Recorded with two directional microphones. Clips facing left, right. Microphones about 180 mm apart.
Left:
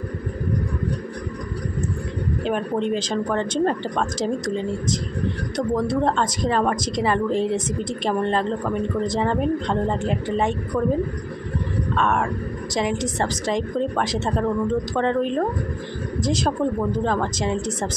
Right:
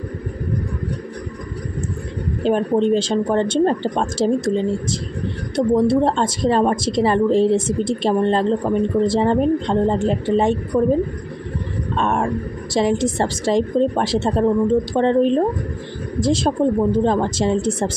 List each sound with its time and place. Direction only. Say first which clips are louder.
2.4 s a woman's voice: right 7 dB; 35° right (ahead or behind)
5.6 s a woman's voice: right 6 dB; 25° right (ahead or behind)